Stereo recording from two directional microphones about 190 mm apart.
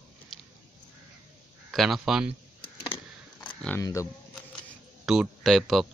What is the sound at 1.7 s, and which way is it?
Speech, centre (ahead or behind).